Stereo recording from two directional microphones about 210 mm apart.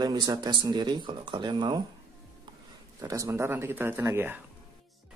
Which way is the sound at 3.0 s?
15° right (ahead or behind).